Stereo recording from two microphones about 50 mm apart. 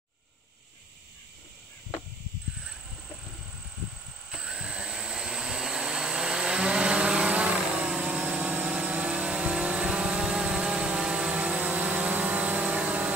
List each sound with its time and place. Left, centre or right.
4.3 s vacuum cleaner: centre
8.4 s vehicle: right